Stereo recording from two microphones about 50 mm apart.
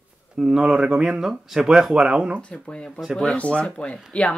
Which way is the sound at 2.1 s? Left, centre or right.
Right.